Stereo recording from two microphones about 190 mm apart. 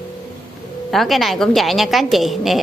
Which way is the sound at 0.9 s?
Centre (ahead or behind).